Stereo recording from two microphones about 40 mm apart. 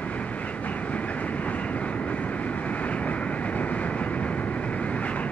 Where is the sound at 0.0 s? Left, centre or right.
Left.